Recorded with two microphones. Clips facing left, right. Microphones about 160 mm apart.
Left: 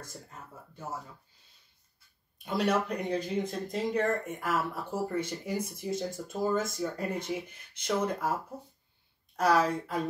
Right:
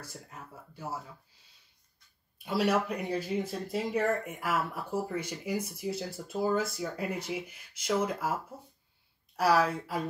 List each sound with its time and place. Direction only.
0.0 s speech: 10° right (ahead or behind)
2.3 s speech: 5° right (ahead or behind)
9.4 s a woman's voice: 5° right (ahead or behind)